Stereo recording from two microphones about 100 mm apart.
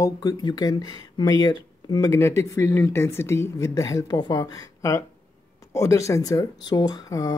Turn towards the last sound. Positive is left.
turn(degrees=40)  # may be behind; listen again after turning